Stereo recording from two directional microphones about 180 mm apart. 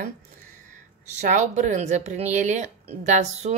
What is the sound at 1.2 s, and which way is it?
Speech, 40° right (ahead or behind).